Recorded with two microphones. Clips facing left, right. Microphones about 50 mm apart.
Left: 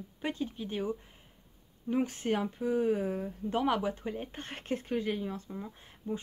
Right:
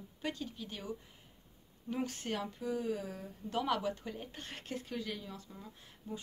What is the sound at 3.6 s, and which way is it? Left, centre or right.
Speech, left.